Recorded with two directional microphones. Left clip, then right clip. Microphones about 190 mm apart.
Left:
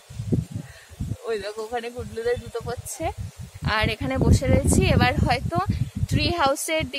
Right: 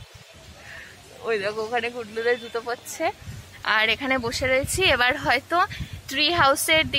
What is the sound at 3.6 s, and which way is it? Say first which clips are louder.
A woman's voice: right 4 dB; 5° left (ahead or behind).